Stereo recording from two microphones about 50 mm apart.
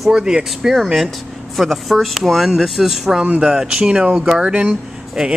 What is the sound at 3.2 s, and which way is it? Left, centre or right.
Speech, right.